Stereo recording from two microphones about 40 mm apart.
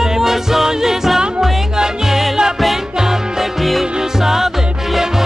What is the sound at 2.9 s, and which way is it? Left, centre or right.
Music, centre.